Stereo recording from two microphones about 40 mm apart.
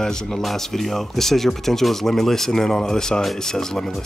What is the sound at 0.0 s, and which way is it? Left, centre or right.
Speech, centre.